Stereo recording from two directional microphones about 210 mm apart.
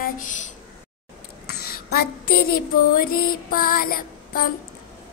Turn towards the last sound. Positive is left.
turn(degrees=45)  # may be behind; listen again after turning